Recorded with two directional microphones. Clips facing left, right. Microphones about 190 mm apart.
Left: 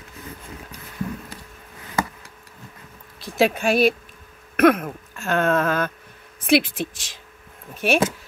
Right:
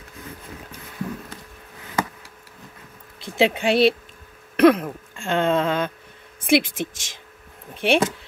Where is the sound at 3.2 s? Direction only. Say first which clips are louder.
Even; 25° right (ahead or behind).